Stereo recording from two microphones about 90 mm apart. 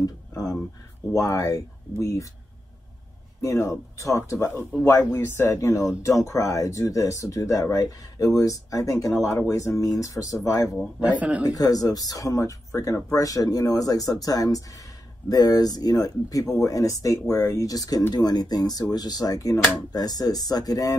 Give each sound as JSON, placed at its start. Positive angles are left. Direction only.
{"t": 0.0, "sound": "speech", "side_deg": 45}
{"t": 3.3, "sound": "speech", "side_deg": 35}
{"t": 11.0, "sound": "speech", "side_deg": -15}
{"t": 11.4, "sound": "speech", "side_deg": 45}